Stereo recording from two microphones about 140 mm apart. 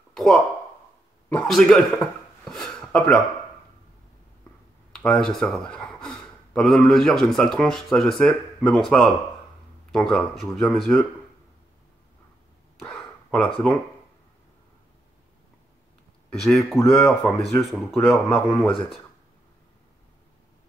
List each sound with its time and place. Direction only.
0.1 s a sound: centre (ahead or behind)
1.3 s speech: 5° left (ahead or behind)
5.0 s speech: 5° left (ahead or behind)
12.8 s a sound: 10° left (ahead or behind)
16.3 s speech: centre (ahead or behind)
18.7 s speech: 40° left (ahead or behind)